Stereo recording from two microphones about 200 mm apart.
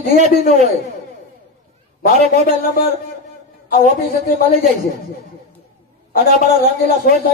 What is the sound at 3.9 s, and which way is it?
Speech, 35° right (ahead or behind).